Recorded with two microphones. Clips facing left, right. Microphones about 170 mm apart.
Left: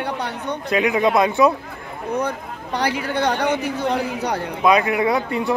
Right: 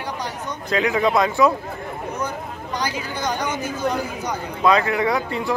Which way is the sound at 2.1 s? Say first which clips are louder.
Left 8 dB; 60° left (ahead or behind).